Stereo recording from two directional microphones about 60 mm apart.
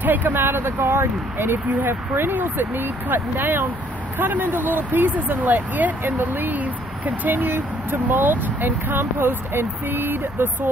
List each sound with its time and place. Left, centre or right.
0.0 s speech: right